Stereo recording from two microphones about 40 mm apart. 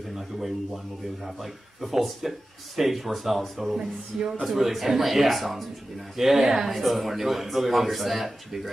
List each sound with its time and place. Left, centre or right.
1.2 s speech: centre
3.7 s speech: centre
4.4 s speech: centre